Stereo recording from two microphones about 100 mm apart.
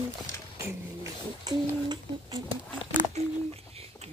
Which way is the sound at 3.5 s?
90° right.